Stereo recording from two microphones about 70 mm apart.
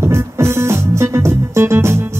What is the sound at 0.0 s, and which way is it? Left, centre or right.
Music, right.